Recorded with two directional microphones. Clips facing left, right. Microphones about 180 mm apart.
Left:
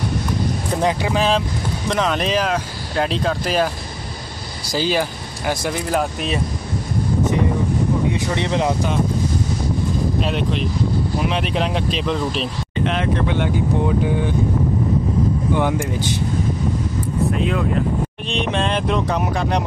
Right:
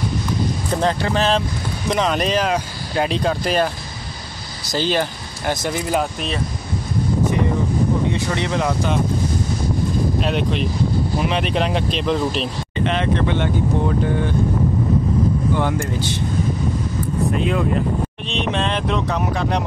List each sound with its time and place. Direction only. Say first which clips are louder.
0.7 s speech: even; 10° left (ahead or behind)
8.4 s speech: left 3 dB; 20° left (ahead or behind)
10.2 s speech: right 1 dB; centre (ahead or behind)
15.5 s speech: left 1 dB; 15° left (ahead or behind)
17.3 s speech: right 3 dB; centre (ahead or behind)